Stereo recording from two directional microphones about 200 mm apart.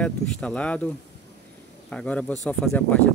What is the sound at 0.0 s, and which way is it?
Speech, 5° left (ahead or behind).